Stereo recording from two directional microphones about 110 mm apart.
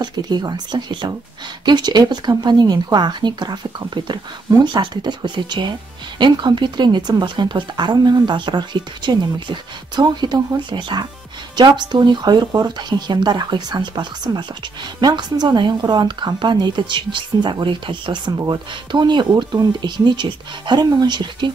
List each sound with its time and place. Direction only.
0.0 s a woman's voice: 40° right (ahead or behind)